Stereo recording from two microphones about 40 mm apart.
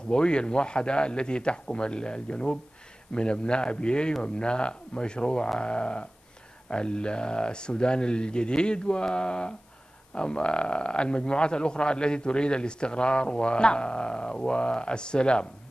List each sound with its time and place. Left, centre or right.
0.1 s speech: left